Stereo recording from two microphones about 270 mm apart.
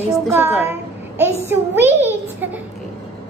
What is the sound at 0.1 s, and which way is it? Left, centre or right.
A child's voice, centre.